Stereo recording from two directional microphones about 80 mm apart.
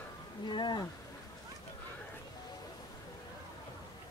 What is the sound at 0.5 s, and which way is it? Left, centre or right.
Speech, left.